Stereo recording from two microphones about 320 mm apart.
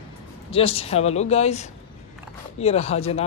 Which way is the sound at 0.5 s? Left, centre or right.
Centre.